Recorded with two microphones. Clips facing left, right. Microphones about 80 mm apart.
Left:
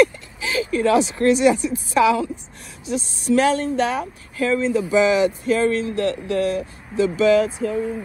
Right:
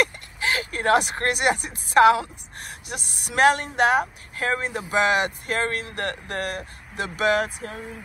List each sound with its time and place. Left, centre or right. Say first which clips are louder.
0.0 s speech: left 6 dB; right